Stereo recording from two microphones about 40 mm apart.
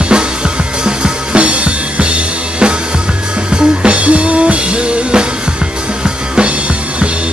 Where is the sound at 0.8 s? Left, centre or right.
Right.